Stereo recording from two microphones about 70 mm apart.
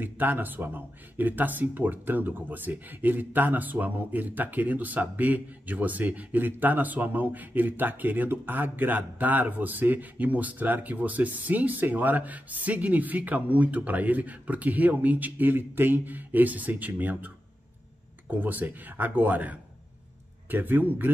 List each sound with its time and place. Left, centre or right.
0.0 s speech: right
18.3 s speech: right